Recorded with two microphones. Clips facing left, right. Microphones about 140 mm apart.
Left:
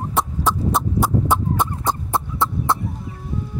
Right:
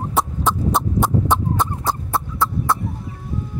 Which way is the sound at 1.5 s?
20° left (ahead or behind).